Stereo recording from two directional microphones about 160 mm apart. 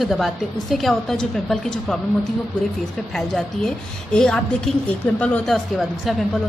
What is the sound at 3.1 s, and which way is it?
A woman's voice, 5° left (ahead or behind).